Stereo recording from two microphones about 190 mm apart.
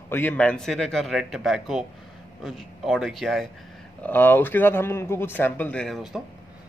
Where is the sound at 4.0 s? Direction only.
10° left (ahead or behind).